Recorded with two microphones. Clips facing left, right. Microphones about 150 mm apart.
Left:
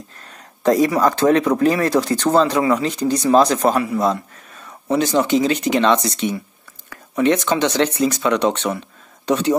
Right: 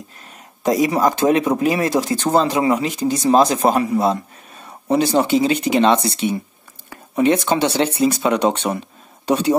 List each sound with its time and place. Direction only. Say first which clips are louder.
0.7 s speech: left 1 dB; 15° right (ahead or behind); by 5.2 s 35° right (ahead or behind)
5.2 s speech: right 1 dB; 10° right (ahead or behind)
5.8 s speech: right 2 dB; 30° right (ahead or behind)
6.9 s a sound: right 1 dB; 30° right (ahead or behind)
7.6 s speech: right 1 dB; 30° right (ahead or behind)
8.3 s speech: even; 10° right (ahead or behind)